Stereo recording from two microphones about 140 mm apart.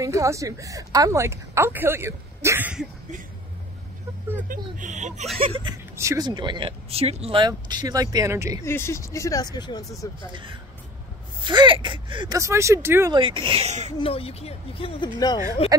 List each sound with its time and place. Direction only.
0.0 s a woman's voice: 20° right (ahead or behind)
4.5 s speech: 65° right (ahead or behind)
5.4 s speech: 40° right (ahead or behind)
5.9 s speech: 25° right (ahead or behind)
8.6 s speech: 20° left (ahead or behind)
10.3 s speech: 35° right (ahead or behind)
12.4 s a woman's voice: 20° right (ahead or behind)
13.1 s speech: 35° right (ahead or behind); by 13.9 s 55° right (ahead or behind)
13.9 s speech: 40° left (ahead or behind)
15.1 s speech: 30° left (ahead or behind)